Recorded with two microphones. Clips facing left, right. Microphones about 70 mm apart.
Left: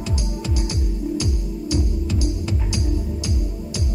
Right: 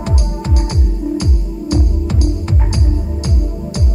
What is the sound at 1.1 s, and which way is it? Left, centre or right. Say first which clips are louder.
Music: right 5 dB; right.